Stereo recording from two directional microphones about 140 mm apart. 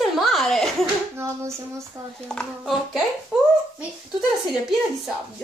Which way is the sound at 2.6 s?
5° right (ahead or behind).